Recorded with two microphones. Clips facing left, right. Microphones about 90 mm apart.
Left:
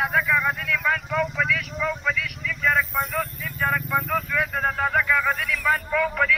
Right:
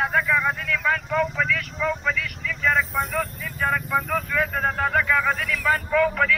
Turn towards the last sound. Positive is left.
turn(degrees=0)  # may be behind; listen again after turning